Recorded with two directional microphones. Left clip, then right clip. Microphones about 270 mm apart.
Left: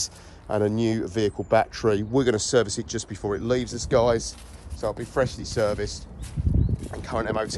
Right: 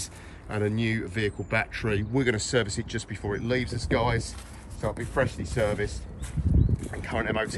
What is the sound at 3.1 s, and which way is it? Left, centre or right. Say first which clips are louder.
Speech: left 4 dB; left.